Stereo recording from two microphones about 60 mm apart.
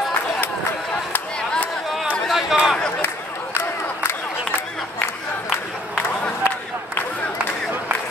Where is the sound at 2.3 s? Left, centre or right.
Centre.